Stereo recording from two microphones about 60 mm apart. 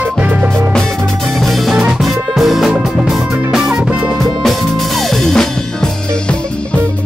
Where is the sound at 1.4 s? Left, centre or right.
Centre.